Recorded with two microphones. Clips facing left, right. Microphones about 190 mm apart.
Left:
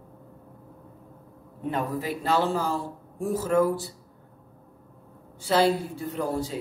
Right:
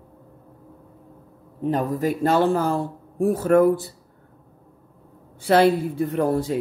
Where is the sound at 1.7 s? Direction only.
45° right (ahead or behind); by 3.9 s 60° right (ahead or behind).